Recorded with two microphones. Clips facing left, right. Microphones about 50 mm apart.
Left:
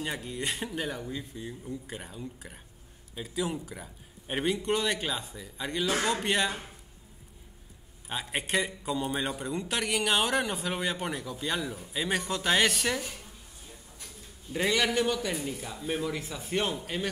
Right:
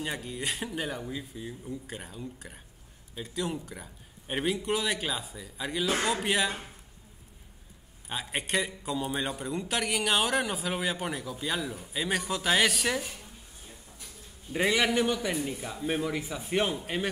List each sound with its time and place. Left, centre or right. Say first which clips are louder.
0.0 s a man's voice: even; centre
8.1 s a man's voice: even; centre
14.5 s a man's voice: right 1 dB; centre